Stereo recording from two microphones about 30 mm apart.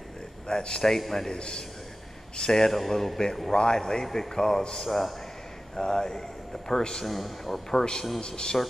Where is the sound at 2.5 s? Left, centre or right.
Centre.